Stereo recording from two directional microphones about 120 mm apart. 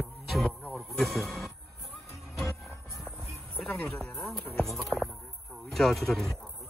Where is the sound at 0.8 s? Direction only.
Centre (ahead or behind).